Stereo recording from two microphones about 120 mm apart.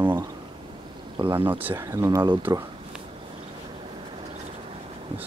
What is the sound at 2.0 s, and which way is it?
Speech, 35° right (ahead or behind).